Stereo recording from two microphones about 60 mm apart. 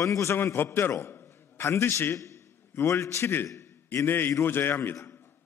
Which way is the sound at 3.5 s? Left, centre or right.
Left.